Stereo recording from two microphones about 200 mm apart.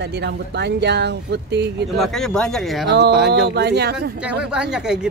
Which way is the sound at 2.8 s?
60° right (ahead or behind).